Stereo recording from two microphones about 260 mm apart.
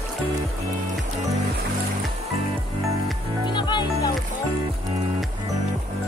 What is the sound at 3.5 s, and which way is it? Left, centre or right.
Music, centre.